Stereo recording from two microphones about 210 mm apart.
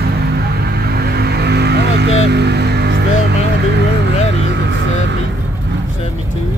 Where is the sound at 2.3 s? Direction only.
50° right (ahead or behind).